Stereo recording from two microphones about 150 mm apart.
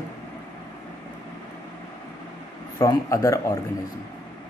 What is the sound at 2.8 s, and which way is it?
Speech, 20° left (ahead or behind).